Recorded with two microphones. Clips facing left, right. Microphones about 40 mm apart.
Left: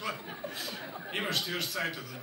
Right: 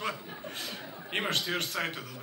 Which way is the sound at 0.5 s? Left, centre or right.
Right.